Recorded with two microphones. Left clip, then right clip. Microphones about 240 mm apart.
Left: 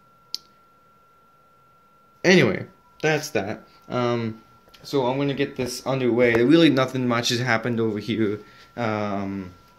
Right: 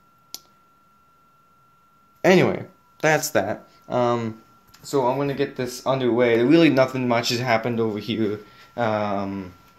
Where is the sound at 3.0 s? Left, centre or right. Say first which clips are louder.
Right 3 dB; centre.